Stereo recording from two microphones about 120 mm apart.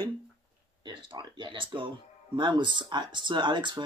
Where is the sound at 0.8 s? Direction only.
40° right (ahead or behind).